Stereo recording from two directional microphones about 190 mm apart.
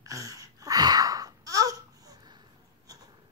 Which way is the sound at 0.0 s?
15° right (ahead or behind).